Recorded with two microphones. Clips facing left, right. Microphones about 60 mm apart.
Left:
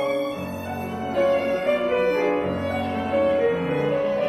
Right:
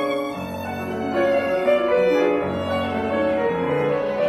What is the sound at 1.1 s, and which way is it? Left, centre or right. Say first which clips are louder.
Music: right 1 dB; right.